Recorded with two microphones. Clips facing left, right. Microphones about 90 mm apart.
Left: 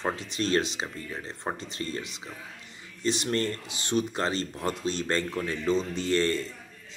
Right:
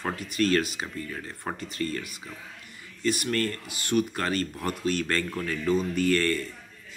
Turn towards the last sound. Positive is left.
turn(degrees=25)  # may be behind; listen again after turning